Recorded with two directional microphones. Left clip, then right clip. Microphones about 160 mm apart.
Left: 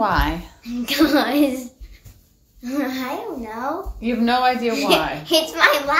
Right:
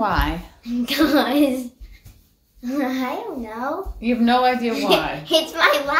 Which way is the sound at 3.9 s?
Centre (ahead or behind).